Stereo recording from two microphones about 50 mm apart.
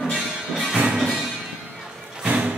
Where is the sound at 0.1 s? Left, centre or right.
Centre.